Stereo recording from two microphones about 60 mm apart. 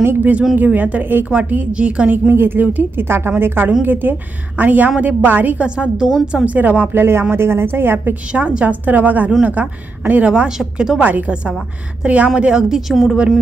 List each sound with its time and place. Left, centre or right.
0.0 s a woman's voice: right
0.6 s a woman's voice: right
2.1 s a woman's voice: right
5.6 s a woman's voice: centre
6.9 s a woman's voice: right
8.5 s a woman's voice: right
10.6 s speech: centre
11.0 s a woman's voice: right; by 13.2 s centre